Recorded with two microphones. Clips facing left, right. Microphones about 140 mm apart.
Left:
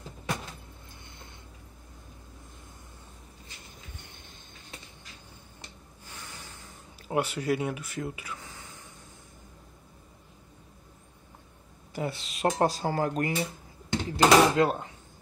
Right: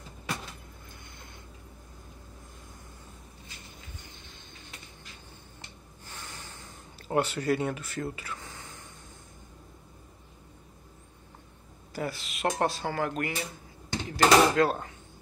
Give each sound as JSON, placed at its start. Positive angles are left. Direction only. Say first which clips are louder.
{"t": 7.0, "sound": "speech", "louder": "right 1 dB", "side_deg": 10}
{"t": 11.9, "sound": "speech", "louder": "left 1 dB", "side_deg": 25}
{"t": 14.1, "sound": "door", "louder": "left 1 dB", "side_deg": 20}